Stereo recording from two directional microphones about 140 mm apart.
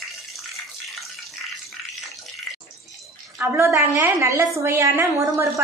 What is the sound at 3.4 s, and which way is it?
A woman's voice, 10° right (ahead or behind).